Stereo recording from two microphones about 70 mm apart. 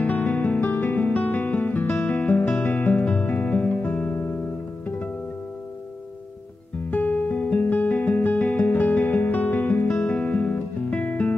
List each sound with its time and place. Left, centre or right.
0.0 s music: left
2.6 s music: left
3.1 s music: centre
3.3 s guitar: left
4.8 s music: left
6.9 s music: left
9.9 s music: centre